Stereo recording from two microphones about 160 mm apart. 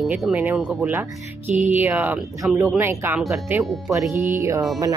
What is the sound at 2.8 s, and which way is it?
Speech, 15° right (ahead or behind).